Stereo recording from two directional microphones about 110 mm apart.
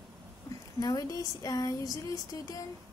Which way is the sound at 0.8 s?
35° left (ahead or behind).